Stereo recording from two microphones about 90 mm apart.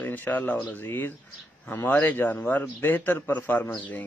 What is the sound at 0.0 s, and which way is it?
A man's voice, 20° left (ahead or behind).